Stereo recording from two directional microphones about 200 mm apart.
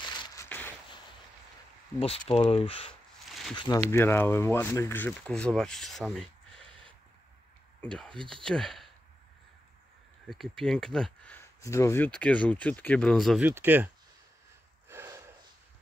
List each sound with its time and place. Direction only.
0.0 s a sound: 20° left (ahead or behind)
0.5 s a sound: 10° left (ahead or behind)
2.0 s speech: 30° left (ahead or behind); by 6.6 s centre (ahead or behind)
7.8 s speech: 5° left (ahead or behind)
10.3 s speech: centre (ahead or behind)
14.9 s snort: 15° right (ahead or behind)